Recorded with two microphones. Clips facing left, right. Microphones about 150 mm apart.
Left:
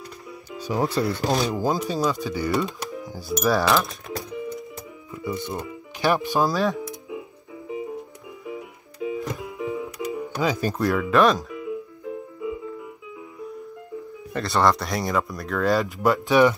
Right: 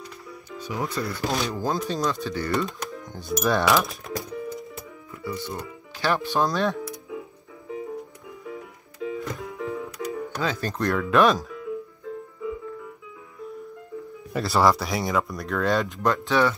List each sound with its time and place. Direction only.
0.6 s speech: 35° left (ahead or behind)
1.5 s speech: 10° left (ahead or behind)
5.1 s speech: 20° left (ahead or behind)
6.3 s speech: 5° left (ahead or behind)
6.9 s music: 15° left (ahead or behind); by 11.5 s centre (ahead or behind)
11.5 s music: 10° left (ahead or behind)
14.3 s speech: 5° right (ahead or behind); by 16.5 s 15° left (ahead or behind)